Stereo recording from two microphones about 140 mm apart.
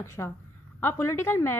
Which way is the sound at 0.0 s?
20° left (ahead or behind).